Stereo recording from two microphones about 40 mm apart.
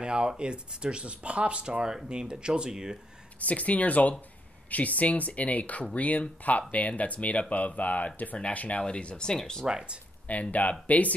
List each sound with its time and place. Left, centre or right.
0.0 s speech: right
3.3 s speech: left
8.4 s speech: left
8.8 s speech: left
9.7 s speech: centre
10.2 s speech: left